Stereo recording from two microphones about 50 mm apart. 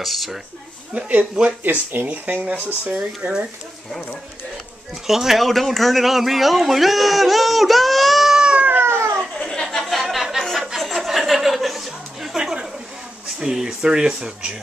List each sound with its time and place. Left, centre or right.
0.0 s speech: centre
0.9 s speech: right
1.6 s speech: right
5.0 s speech: centre
8.4 s cat: centre
8.8 s a sound: right
9.4 s chatter: centre
9.9 s a sound: centre
13.4 s speech: centre